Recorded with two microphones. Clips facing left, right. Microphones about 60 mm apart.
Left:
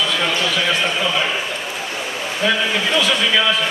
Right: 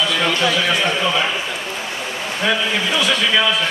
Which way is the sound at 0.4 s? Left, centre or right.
Centre.